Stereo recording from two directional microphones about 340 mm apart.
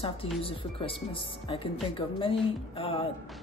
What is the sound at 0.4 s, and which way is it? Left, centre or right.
Speech, centre.